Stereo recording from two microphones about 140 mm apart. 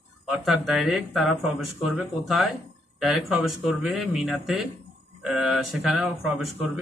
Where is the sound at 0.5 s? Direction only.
Centre (ahead or behind).